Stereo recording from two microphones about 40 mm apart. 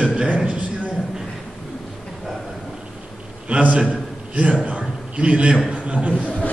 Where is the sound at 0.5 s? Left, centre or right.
Right.